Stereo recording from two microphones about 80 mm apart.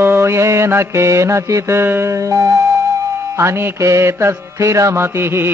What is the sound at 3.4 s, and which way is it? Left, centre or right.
Mantra, right.